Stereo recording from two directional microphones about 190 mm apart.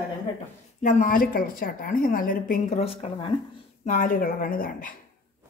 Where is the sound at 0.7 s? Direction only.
40° left (ahead or behind).